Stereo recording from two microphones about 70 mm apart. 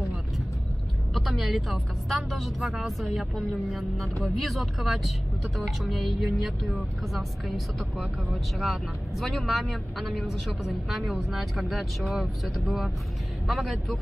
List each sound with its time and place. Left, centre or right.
1.1 s speech: centre